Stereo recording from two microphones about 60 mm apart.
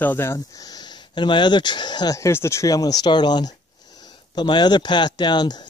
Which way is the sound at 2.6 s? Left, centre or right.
Left.